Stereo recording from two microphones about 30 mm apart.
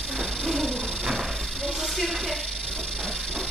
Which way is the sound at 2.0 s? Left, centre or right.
Centre.